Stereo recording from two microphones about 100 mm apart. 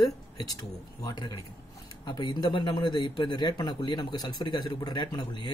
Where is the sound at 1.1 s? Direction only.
40° left (ahead or behind).